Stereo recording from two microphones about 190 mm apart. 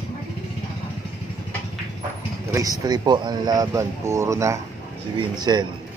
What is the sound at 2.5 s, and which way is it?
Speech, 20° right (ahead or behind).